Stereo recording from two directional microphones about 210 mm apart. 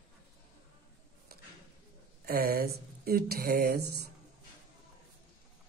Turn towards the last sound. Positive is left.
turn(degrees=-50)  # may be behind; listen again after turning